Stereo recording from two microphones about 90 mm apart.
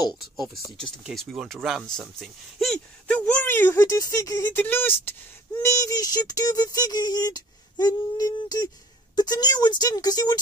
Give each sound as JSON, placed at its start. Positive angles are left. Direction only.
{"t": 0.7, "sound": "speech", "side_deg": 5}
{"t": 3.1, "sound": "speech", "side_deg": 15}
{"t": 3.7, "sound": "speech", "side_deg": 40}
{"t": 4.6, "sound": "speech", "side_deg": 20}
{"t": 5.6, "sound": "a sound", "side_deg": 35}